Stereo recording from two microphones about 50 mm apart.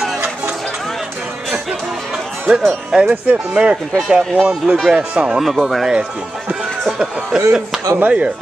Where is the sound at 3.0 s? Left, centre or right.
Right.